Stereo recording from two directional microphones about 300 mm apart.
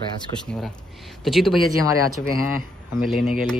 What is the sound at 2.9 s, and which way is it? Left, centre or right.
Speech, centre.